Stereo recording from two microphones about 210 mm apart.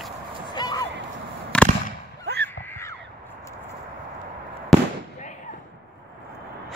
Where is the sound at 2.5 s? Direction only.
10° left (ahead or behind).